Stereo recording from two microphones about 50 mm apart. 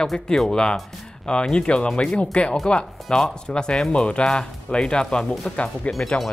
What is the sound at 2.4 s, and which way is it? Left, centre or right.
Speech, left.